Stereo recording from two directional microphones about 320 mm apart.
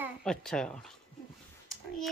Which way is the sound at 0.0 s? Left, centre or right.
Centre.